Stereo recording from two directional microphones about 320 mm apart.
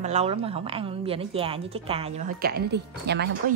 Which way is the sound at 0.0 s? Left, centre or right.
Centre.